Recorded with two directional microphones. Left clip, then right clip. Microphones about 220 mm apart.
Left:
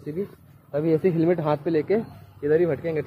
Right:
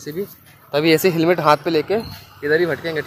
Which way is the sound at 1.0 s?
15° right (ahead or behind).